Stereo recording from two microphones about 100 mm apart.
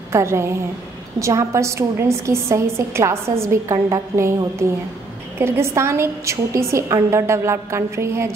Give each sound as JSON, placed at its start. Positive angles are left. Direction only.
{"t": 0.1, "sound": "a woman's voice", "side_deg": -30}